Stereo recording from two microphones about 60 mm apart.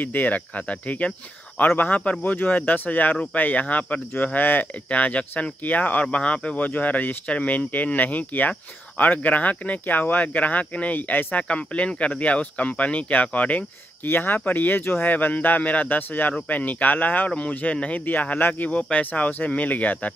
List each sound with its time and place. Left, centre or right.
0.0 s speech: left
14.0 s speech: left